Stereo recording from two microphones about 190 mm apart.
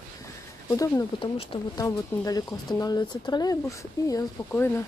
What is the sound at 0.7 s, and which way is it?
Speech, 15° left (ahead or behind).